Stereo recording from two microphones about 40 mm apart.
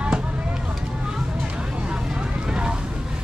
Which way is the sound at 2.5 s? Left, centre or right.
Right.